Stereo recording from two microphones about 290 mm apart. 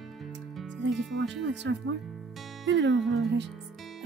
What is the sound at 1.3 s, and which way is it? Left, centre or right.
Speech, right.